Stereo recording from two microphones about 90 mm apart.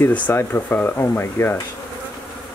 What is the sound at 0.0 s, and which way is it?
Speech, 25° left (ahead or behind).